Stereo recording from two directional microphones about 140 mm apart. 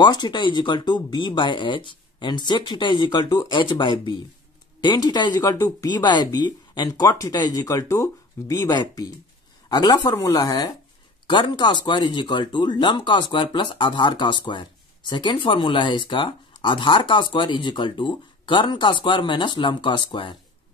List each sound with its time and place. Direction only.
0.0 s speech: 30° left (ahead or behind)